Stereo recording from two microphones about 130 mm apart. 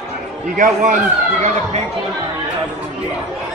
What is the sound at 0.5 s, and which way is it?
Speech, 90° right.